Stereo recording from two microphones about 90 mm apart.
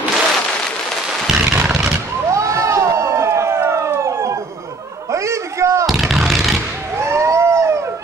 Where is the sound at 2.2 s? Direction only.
35° right (ahead or behind).